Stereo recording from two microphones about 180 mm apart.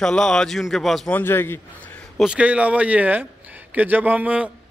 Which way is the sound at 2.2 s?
5° right (ahead or behind).